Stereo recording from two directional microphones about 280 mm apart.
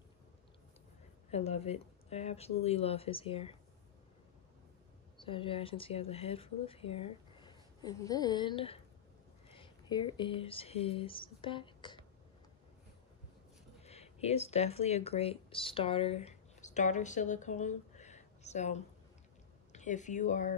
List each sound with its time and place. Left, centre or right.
1.3 s speech: left
5.1 s speech: centre
13.8 s speech: left